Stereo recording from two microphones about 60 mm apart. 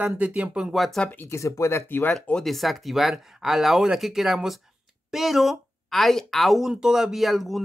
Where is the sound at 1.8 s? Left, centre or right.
Left.